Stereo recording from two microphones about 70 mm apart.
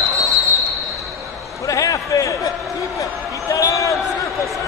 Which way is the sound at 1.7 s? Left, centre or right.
Left.